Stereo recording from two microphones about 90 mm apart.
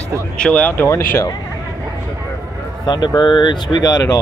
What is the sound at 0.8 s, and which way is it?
Speech, 30° left (ahead or behind).